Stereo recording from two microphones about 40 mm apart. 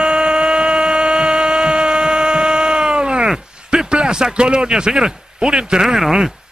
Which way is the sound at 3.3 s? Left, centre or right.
Right.